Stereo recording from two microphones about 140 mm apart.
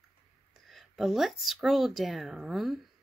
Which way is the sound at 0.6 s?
Centre (ahead or behind).